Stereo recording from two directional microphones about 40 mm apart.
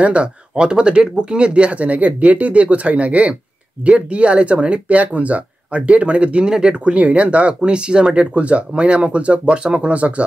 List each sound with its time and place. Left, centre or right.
0.0 s speech: right